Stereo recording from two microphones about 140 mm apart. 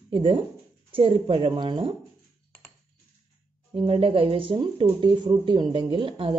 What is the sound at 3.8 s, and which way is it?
Speech, 40° right (ahead or behind).